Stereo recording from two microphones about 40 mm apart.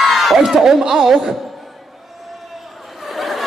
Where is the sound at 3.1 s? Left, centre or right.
Centre.